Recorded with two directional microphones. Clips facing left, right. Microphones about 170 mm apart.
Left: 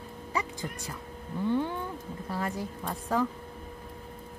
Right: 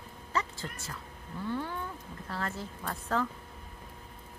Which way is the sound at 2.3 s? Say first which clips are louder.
Left 4 dB; 15° left (ahead or behind).